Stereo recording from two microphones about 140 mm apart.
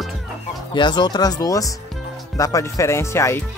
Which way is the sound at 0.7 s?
35° left (ahead or behind).